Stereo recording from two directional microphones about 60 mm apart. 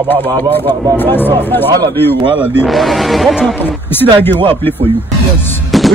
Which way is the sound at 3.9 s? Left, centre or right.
Left.